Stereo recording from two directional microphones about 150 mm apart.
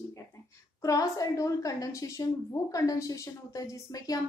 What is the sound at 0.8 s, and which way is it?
A woman's voice, 25° left (ahead or behind).